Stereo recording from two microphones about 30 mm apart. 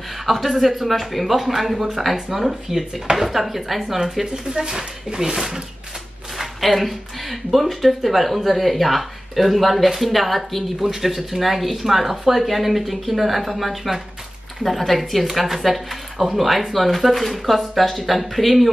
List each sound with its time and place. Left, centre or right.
0.3 s speech: centre
4.1 s speech: centre
6.3 s speech: centre
15.3 s speech: centre